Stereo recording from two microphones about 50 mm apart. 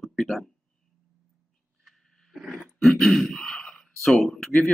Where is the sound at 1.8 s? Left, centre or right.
Centre.